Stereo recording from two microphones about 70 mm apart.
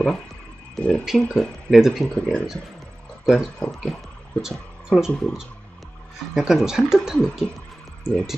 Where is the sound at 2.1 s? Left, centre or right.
Centre.